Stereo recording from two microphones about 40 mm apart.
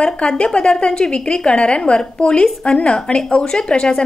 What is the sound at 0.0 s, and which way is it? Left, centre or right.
A woman's voice, left.